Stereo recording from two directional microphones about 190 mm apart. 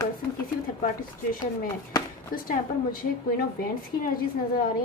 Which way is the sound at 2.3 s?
50° left (ahead or behind).